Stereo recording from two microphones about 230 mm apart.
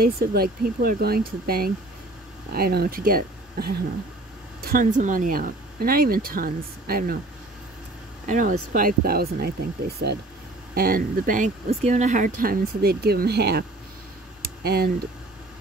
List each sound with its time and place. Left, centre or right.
0.0 s speech: right
8.3 s speech: right